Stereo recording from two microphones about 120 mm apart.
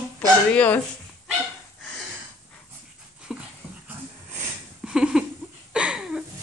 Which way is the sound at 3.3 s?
5° right (ahead or behind).